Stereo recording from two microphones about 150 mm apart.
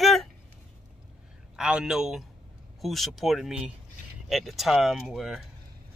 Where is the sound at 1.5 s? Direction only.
5° right (ahead or behind).